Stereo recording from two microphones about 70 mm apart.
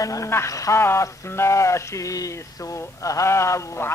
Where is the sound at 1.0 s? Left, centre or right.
Left.